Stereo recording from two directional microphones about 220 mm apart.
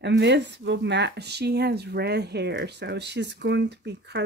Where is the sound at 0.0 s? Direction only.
50° right (ahead or behind).